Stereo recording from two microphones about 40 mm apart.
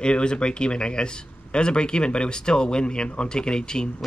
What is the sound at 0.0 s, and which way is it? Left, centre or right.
Speech, left.